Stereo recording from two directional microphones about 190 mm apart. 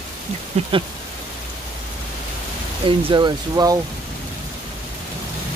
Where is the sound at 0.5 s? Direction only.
35° right (ahead or behind).